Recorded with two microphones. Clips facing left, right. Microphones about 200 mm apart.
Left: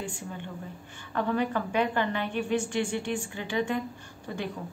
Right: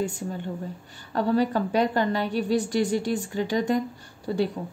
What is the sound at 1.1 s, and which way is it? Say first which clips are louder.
A woman's voice: right 5 dB; 35° right (ahead or behind).